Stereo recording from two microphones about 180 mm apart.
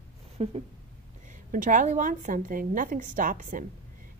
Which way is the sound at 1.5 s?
45° right (ahead or behind).